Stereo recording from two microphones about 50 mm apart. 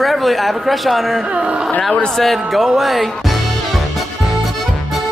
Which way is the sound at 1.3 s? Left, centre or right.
Right.